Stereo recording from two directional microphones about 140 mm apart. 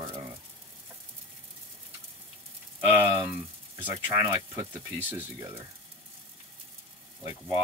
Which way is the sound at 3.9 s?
20° right (ahead or behind).